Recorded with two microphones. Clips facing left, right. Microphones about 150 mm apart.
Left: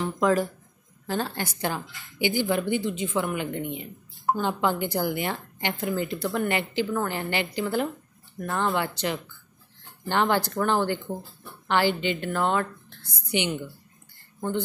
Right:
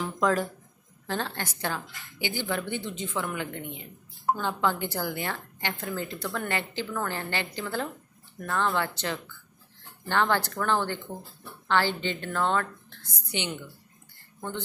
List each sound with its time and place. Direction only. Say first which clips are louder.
0.0 s a woman's voice: left 3 dB; 5° left (ahead or behind)